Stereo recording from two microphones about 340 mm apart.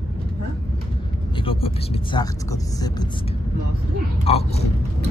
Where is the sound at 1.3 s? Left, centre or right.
Centre.